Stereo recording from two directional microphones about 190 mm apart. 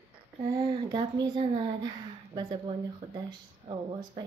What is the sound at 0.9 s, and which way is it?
Speech, 25° right (ahead or behind).